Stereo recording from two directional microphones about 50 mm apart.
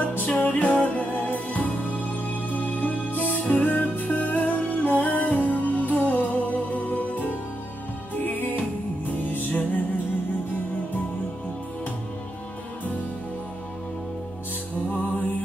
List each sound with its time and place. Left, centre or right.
0.3 s music: left